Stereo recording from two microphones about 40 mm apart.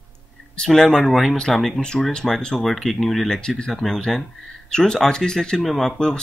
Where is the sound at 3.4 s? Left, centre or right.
Centre.